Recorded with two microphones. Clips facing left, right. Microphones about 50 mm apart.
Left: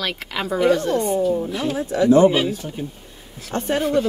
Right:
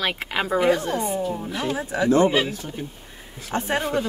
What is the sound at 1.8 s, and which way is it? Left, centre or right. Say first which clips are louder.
Speech: left 7 dB; right.